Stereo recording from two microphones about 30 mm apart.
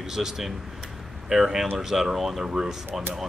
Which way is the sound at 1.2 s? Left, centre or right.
Centre.